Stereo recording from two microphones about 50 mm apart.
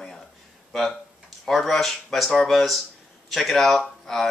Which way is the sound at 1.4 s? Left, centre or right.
Centre.